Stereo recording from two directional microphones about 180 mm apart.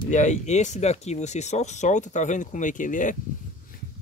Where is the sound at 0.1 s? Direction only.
40° left (ahead or behind).